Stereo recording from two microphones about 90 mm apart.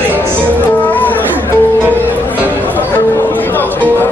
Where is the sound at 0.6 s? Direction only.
20° left (ahead or behind).